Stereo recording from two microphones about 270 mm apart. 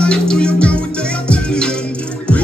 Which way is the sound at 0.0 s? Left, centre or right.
Centre.